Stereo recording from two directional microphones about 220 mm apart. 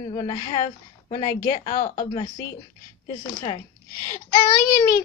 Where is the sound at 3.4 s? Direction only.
15° left (ahead or behind).